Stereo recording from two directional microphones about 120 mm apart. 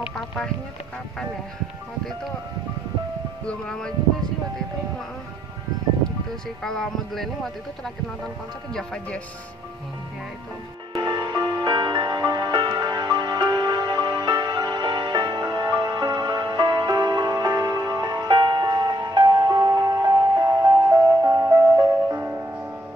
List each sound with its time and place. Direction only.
3.4 s speech: 5° left (ahead or behind)
6.6 s speech: 5° left (ahead or behind)
10.9 s music: 40° right (ahead or behind); by 22.5 s 20° right (ahead or behind)